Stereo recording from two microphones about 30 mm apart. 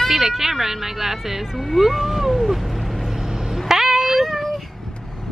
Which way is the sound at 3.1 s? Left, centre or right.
Centre.